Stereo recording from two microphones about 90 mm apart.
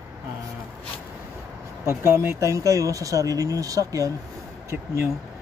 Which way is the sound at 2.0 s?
25° right (ahead or behind).